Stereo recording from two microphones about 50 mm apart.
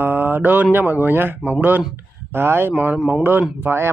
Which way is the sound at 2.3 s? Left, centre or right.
Right.